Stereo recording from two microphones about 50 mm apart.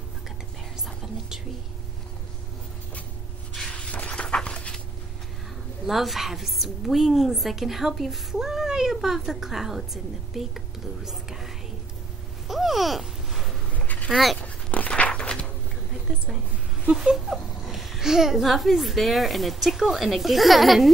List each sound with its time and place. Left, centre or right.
0.8 s music: centre
3.7 s a sound: left
5.9 s a woman's voice: centre
12.4 s a sound: centre
13.7 s a sound: left
14.1 s a woman's voice: centre
14.4 s dog: left
14.9 s walk: left
16.9 s a woman's voice: centre